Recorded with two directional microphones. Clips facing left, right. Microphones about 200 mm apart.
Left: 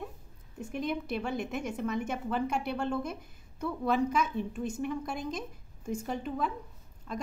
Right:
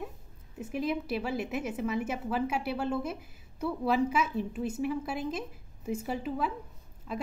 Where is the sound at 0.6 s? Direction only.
5° right (ahead or behind).